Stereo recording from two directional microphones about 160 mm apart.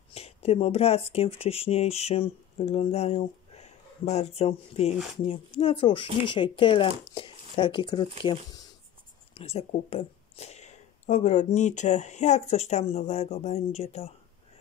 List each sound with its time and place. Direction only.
0.1 s speech: 40° left (ahead or behind)
9.3 s speech: 40° left (ahead or behind)